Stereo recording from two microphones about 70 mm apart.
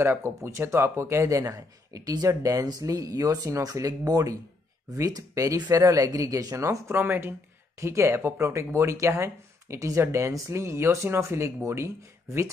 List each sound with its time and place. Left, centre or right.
0.0 s speech: right
2.2 s speech: right
2.6 s speech: right
6.9 s speech: right
7.8 s speech: right